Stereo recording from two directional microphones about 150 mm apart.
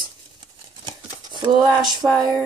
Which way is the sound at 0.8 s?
30° right (ahead or behind).